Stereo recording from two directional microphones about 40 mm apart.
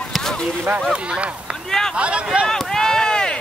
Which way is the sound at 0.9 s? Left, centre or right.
Right.